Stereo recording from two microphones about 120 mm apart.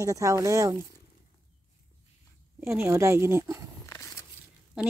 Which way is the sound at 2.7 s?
20° right (ahead or behind).